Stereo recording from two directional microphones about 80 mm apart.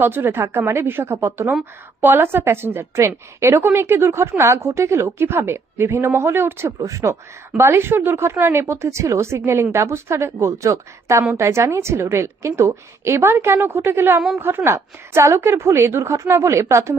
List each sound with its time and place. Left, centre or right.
0.0 s a woman's voice: right
6.8 s a woman's voice: right